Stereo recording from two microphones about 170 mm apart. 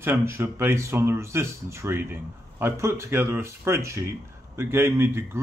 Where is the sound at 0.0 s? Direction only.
15° right (ahead or behind).